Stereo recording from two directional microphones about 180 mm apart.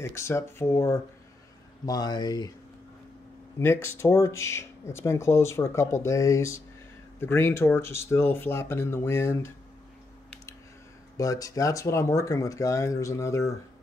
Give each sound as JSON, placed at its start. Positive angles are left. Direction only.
{"t": 0.0, "sound": "speech", "side_deg": 15}
{"t": 3.5, "sound": "speech", "side_deg": 15}
{"t": 11.1, "sound": "speech", "side_deg": 20}